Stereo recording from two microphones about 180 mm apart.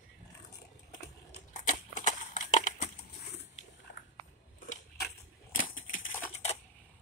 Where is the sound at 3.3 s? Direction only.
70° left (ahead or behind).